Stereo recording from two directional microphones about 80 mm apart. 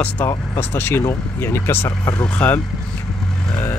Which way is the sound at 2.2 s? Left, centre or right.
Centre.